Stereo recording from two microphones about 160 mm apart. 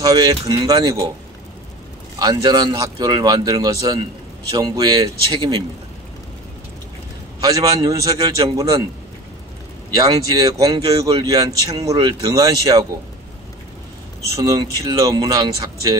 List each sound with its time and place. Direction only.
0.0 s speech: 25° right (ahead or behind)
2.1 s speech: 25° right (ahead or behind)
7.3 s speech: 25° right (ahead or behind)
9.9 s speech: 25° right (ahead or behind)
14.3 s speech: 25° right (ahead or behind)